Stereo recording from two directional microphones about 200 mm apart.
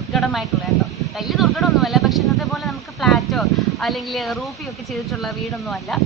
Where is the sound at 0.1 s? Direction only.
Centre (ahead or behind).